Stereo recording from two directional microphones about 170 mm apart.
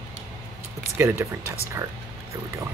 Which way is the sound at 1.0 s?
15° right (ahead or behind).